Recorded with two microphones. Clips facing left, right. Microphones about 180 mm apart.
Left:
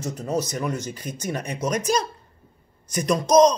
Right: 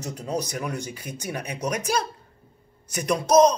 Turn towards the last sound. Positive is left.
turn(degrees=-10)  # may be behind; listen again after turning